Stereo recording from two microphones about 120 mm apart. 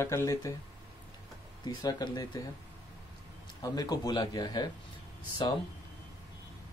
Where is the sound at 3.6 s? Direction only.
30° left (ahead or behind).